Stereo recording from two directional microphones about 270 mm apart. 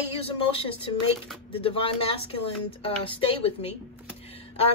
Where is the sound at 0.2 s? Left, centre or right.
Left.